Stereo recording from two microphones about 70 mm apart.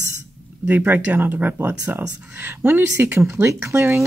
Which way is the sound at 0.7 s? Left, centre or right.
Right.